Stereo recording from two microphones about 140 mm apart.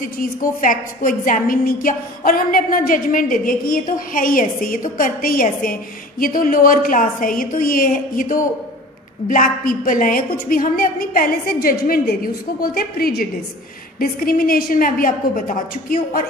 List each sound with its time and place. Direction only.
0.0 s a woman's voice: 80° left
5.7 s a woman's voice: 90° left